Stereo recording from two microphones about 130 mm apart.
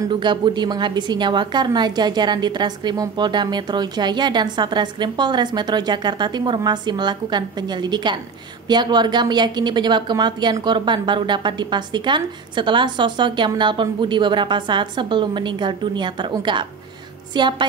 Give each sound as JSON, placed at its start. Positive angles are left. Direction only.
{"t": 0.1, "sound": "a woman's voice", "side_deg": -35}